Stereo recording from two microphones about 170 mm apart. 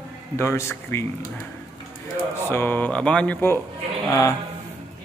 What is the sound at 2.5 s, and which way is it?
Speech, 10° left (ahead or behind).